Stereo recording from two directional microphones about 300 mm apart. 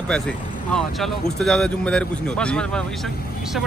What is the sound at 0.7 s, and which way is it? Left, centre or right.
Speech, centre.